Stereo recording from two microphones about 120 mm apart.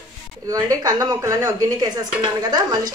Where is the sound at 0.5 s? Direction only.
30° right (ahead or behind).